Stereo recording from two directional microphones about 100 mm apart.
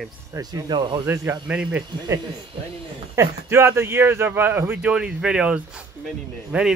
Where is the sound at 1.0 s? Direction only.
25° right (ahead or behind).